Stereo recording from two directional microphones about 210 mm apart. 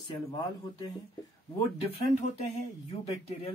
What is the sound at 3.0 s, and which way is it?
Speech, 30° left (ahead or behind).